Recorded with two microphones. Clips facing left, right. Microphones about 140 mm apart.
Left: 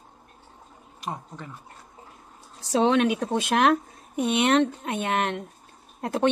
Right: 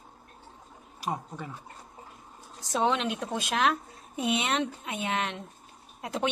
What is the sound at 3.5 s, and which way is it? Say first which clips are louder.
Speech: left 6 dB; 55° left (ahead or behind).